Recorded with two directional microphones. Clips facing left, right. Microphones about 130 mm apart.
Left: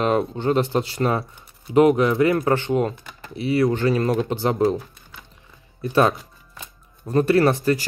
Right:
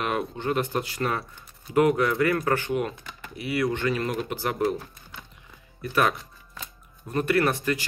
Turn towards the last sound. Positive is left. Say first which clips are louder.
# left 6 dB
turn(degrees=30)  # may be behind; listen again after turning